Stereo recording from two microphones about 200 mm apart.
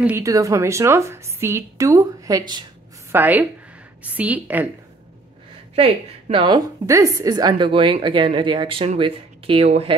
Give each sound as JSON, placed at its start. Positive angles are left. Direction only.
{"t": 0.0, "sound": "a woman's voice", "side_deg": -15}
{"t": 3.1, "sound": "a woman's voice", "side_deg": -10}
{"t": 5.8, "sound": "a woman's voice", "side_deg": -30}